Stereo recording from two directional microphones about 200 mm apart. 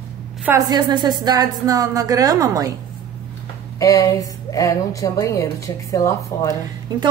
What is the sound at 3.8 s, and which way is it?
A woman's voice, 15° left (ahead or behind).